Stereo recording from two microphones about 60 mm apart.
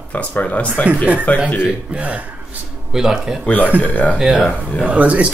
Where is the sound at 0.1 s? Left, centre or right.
Left.